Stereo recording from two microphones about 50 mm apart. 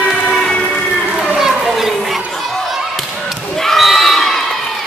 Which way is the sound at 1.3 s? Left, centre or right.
Centre.